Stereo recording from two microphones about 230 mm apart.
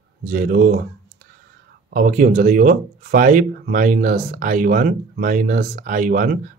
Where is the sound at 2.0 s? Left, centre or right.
Right.